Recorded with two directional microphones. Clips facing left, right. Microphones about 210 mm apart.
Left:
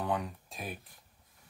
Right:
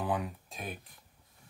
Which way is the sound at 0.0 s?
5° right (ahead or behind).